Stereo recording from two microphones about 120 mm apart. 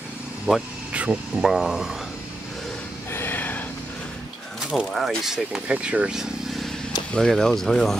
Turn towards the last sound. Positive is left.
turn(degrees=5)  # may be behind; listen again after turning